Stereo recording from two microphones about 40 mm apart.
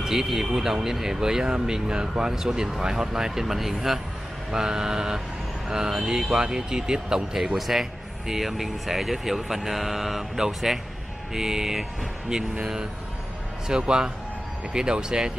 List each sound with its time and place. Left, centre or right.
0.0 s speech: centre
7.3 s speech: centre
13.7 s speech: centre